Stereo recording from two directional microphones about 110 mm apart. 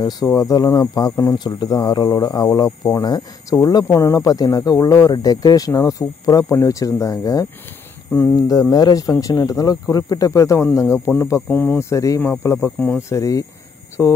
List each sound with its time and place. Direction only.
0.0 s speech: 35° left (ahead or behind)
8.4 s speech: 35° left (ahead or behind); by 11.9 s 15° left (ahead or behind)
11.9 s speech: 30° left (ahead or behind)
13.1 s speech: 30° left (ahead or behind)